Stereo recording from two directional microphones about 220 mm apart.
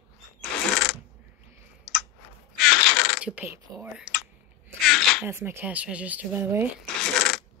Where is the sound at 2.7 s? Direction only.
40° left (ahead or behind).